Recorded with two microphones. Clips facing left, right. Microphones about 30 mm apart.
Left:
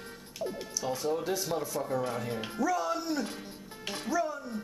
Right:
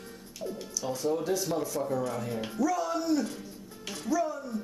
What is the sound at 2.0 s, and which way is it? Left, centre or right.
Speech, left.